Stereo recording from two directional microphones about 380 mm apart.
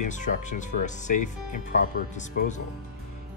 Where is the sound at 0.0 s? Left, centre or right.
Centre.